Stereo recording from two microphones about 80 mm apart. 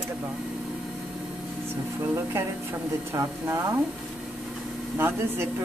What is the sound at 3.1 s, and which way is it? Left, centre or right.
Speech, right.